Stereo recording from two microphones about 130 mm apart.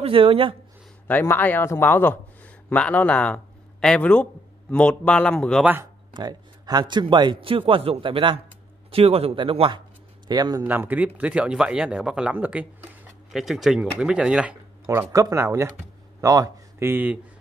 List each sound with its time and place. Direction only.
0.0 s speech: 45° right (ahead or behind)
1.0 s a man's voice: 15° left (ahead or behind)
6.1 s a man's voice: 30° right (ahead or behind)
10.6 s speech: 15° right (ahead or behind)
14.9 s speech: 25° right (ahead or behind)
16.9 s speech: 15° right (ahead or behind)